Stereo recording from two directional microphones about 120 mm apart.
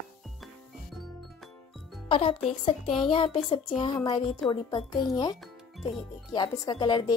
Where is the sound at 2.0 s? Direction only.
45° left (ahead or behind).